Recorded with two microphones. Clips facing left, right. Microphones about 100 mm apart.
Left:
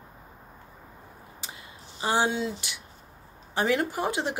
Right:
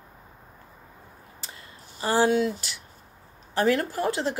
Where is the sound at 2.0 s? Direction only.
15° left (ahead or behind).